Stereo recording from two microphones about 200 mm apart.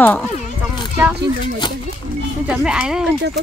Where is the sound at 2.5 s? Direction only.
5° right (ahead or behind).